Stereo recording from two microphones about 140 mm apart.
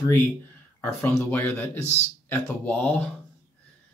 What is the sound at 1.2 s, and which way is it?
Speech, 15° left (ahead or behind).